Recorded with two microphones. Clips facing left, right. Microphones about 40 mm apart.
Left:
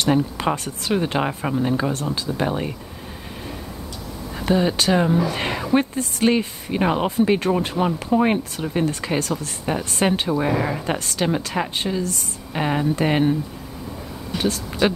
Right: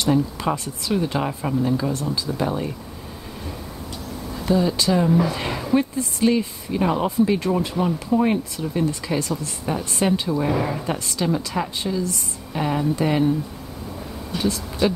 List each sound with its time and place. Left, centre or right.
0.0 s a woman's voice: left
4.4 s a woman's voice: left
5.8 s a woman's voice: left
7.7 s a woman's voice: left
9.9 s a woman's voice: left
10.3 s a woman's voice: centre
10.9 s a woman's voice: left
12.5 s a woman's voice: left
14.4 s speech: left